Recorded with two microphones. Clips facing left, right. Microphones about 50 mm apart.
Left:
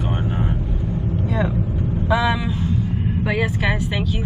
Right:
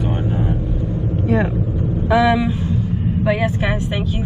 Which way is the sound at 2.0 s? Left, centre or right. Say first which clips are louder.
Right 5 dB; right.